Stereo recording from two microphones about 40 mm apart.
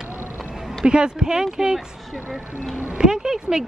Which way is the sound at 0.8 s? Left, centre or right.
Right.